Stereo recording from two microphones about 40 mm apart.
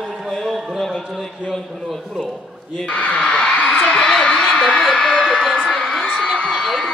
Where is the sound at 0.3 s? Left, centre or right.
Centre.